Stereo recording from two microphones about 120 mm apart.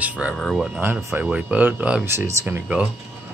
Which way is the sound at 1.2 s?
10° right (ahead or behind).